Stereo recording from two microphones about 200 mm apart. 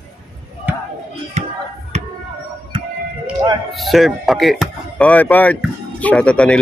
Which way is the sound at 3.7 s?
Centre (ahead or behind).